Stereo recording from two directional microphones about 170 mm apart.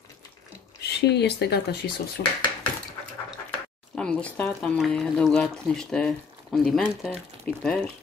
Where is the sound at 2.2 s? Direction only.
55° left (ahead or behind).